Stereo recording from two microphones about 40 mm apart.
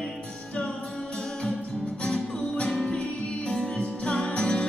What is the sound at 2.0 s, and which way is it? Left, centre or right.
Music, left.